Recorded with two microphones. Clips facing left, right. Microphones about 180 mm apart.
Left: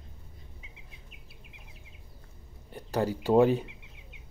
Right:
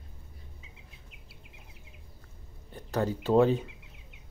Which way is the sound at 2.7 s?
10° left (ahead or behind).